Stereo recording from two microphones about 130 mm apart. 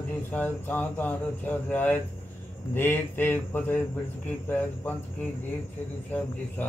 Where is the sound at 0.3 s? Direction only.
15° left (ahead or behind).